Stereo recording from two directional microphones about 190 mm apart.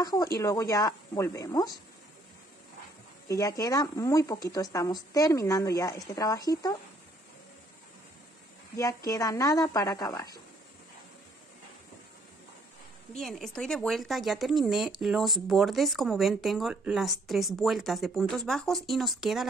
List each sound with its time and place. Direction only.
0.0 s speech: 20° left (ahead or behind)
3.3 s a woman's voice: 15° left (ahead or behind)
8.7 s speech: 15° left (ahead or behind)
13.1 s speech: centre (ahead or behind)